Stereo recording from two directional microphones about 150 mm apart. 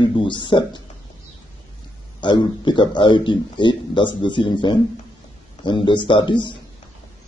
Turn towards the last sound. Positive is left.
turn(degrees=30)  # may be behind; listen again after turning